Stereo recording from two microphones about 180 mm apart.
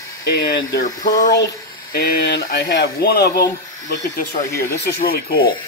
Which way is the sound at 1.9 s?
60° left (ahead or behind).